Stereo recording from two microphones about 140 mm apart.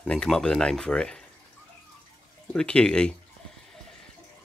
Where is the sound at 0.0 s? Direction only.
5° left (ahead or behind).